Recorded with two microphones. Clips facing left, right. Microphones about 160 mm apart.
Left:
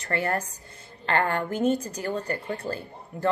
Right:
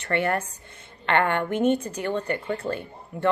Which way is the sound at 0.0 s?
35° left (ahead or behind).